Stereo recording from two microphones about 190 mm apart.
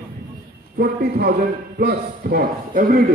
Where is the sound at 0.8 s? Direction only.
55° right (ahead or behind).